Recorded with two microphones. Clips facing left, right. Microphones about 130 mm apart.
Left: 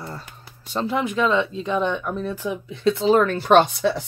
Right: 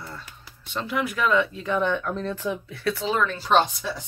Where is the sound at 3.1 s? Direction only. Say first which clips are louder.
Left 6 dB; 50° left (ahead or behind).